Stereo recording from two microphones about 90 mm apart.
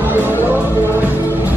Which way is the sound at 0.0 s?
25° right (ahead or behind).